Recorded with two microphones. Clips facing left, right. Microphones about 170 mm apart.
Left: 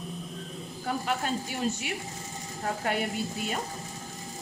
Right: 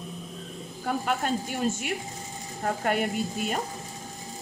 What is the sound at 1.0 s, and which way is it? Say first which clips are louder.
Speech: right 3 dB; 50° right (ahead or behind).